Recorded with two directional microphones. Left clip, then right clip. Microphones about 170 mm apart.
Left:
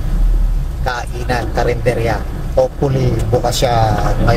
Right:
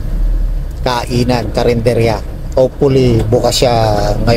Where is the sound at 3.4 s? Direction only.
35° right (ahead or behind).